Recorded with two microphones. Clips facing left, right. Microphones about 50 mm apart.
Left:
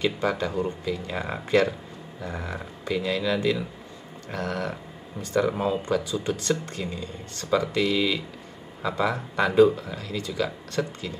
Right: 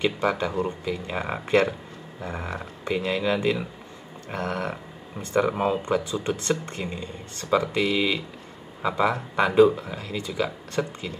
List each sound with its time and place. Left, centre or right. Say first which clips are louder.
0.0 s speech: right 1 dB; right